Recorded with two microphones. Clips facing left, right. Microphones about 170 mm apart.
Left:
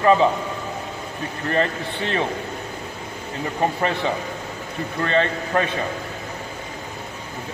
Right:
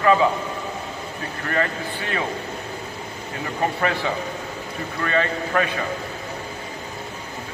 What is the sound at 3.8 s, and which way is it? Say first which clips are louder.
Speech: left 1 dB; 20° left (ahead or behind).